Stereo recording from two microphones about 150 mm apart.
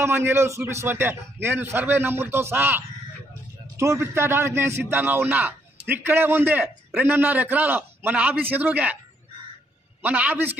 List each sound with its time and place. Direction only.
0.0 s a man's voice: 15° right (ahead or behind)
10.0 s a man's voice: 10° right (ahead or behind)